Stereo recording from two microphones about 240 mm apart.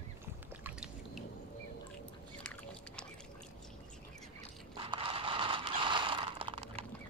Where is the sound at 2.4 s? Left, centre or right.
Centre.